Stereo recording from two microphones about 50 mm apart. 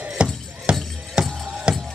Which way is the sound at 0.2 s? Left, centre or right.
Right.